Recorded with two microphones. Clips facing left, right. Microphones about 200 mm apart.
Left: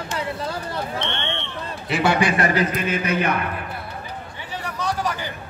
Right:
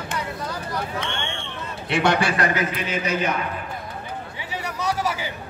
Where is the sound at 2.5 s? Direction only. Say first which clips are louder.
Left 3 dB; 50° left (ahead or behind).